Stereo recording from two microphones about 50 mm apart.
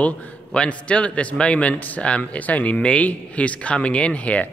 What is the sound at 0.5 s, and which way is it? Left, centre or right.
A man's voice, left.